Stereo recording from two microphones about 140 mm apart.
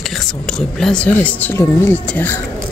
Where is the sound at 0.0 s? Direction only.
Centre (ahead or behind).